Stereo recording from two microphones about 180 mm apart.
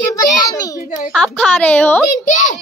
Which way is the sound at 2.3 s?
45° left (ahead or behind).